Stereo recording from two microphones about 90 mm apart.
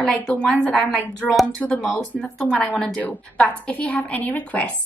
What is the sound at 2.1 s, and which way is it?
Speech, centre (ahead or behind).